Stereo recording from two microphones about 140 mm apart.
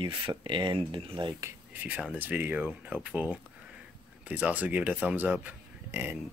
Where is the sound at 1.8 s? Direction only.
10° right (ahead or behind).